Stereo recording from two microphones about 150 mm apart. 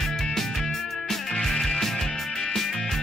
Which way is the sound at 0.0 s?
5° left (ahead or behind).